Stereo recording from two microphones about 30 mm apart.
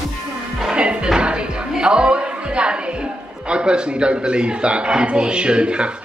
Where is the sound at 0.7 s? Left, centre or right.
Right.